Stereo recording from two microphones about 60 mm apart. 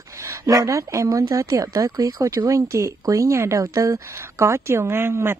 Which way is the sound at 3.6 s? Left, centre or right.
Right.